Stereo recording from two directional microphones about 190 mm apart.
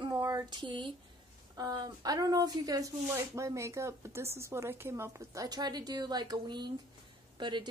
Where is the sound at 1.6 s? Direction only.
20° right (ahead or behind).